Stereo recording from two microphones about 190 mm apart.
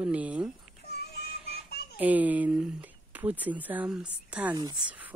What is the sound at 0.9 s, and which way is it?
Music, 60° left (ahead or behind).